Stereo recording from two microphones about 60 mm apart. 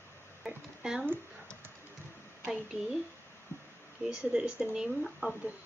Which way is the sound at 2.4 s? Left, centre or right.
Centre.